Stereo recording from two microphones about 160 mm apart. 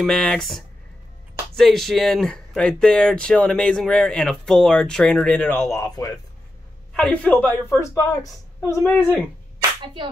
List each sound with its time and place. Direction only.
0.0 s speech: centre (ahead or behind); by 6.1 s 20° left (ahead or behind)
6.9 s a man's voice: 5° left (ahead or behind)
7.9 s speech: 20° left (ahead or behind)
8.8 s speech: 5° left (ahead or behind)